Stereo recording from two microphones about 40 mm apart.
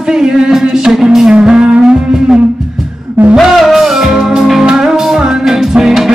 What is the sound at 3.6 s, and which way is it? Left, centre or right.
Music, centre.